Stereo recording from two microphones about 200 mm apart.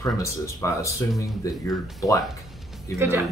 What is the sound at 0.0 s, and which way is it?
Speech, 15° left (ahead or behind).